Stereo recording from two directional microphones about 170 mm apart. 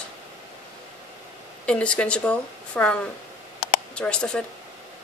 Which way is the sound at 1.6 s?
5° left (ahead or behind).